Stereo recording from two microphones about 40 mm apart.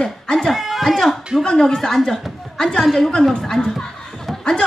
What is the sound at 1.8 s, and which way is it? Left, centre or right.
A woman's voice, centre.